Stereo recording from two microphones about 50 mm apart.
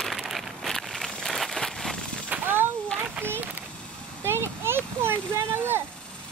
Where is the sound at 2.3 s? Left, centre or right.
Right.